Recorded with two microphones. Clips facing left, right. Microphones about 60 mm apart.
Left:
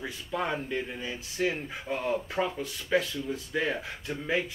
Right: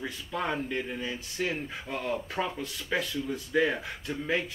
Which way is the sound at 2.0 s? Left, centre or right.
Centre.